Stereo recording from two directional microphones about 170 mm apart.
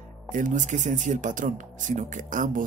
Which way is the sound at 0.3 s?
50° right (ahead or behind).